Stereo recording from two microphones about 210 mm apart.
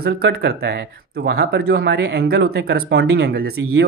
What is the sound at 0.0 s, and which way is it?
Speech, 50° right (ahead or behind).